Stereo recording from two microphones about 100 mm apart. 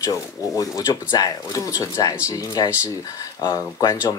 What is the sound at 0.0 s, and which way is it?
A woman's voice, 35° left (ahead or behind).